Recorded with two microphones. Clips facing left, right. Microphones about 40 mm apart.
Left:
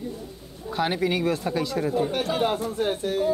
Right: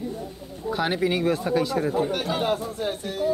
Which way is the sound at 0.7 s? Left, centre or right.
Centre.